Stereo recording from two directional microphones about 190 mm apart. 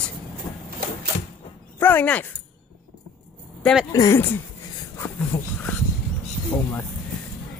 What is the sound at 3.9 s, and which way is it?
Speech, 15° left (ahead or behind).